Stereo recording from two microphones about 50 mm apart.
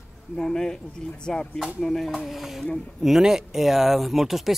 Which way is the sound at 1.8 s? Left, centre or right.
Centre.